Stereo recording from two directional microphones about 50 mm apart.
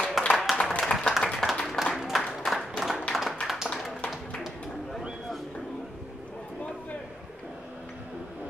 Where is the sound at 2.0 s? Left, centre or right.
Centre.